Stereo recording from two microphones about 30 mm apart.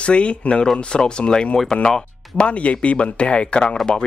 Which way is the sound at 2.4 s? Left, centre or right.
Left.